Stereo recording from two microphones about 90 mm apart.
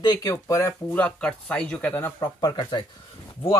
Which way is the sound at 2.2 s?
50° left (ahead or behind).